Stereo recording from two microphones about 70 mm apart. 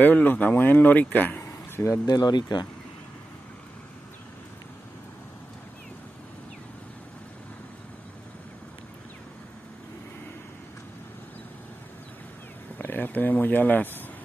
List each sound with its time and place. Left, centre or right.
0.0 s speech: left
1.4 s a sound: left
2.0 s speech: left
12.7 s speech: left